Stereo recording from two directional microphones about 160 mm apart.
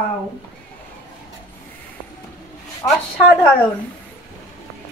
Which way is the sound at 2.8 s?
20° left (ahead or behind).